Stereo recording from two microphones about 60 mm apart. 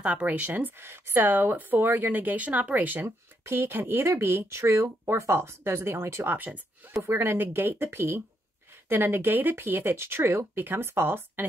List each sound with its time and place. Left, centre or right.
0.0 s speech: right
3.4 s speech: right
6.2 s speech: right
6.9 s speech: right